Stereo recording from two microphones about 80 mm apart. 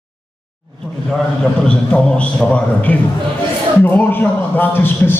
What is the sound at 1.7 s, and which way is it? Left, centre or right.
A man's voice, centre.